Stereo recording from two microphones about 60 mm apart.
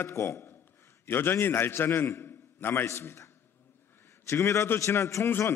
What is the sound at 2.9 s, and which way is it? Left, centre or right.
A man's voice, left.